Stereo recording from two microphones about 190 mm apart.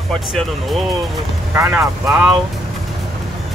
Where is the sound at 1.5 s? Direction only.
10° right (ahead or behind).